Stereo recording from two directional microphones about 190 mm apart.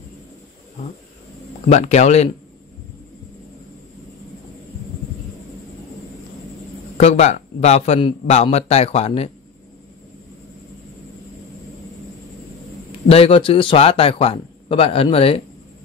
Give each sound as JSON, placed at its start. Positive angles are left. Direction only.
{"t": 1.7, "sound": "a man's voice", "side_deg": 35}
{"t": 7.0, "sound": "a man's voice", "side_deg": 35}
{"t": 13.1, "sound": "a man's voice", "side_deg": 30}